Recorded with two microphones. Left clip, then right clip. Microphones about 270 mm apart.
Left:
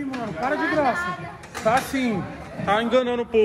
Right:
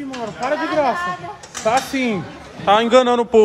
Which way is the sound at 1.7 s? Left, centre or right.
Right.